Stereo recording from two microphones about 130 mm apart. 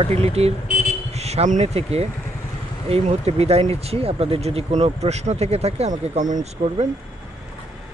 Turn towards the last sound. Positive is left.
turn(degrees=-70)  # may be behind; listen again after turning